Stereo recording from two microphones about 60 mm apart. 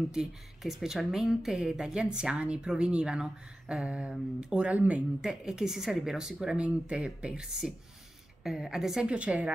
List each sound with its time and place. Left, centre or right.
0.1 s a woman's voice: centre; by 5.0 s right
5.2 s a woman's voice: centre
9.0 s speech: centre